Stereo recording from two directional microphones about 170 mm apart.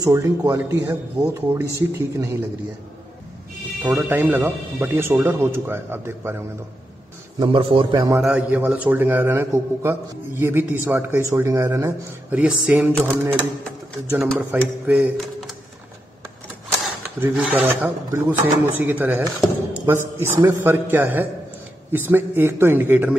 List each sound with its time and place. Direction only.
0.0 s a man's voice: 20° right (ahead or behind)
3.8 s a man's voice: 10° right (ahead or behind)
7.3 s a man's voice: 30° right (ahead or behind)
8.2 s a man's voice: 5° right (ahead or behind)
17.0 s a man's voice: 10° right (ahead or behind)